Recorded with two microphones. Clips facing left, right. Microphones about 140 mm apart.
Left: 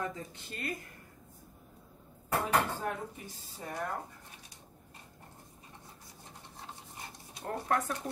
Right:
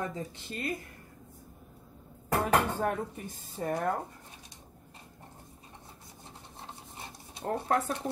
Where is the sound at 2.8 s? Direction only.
50° right (ahead or behind).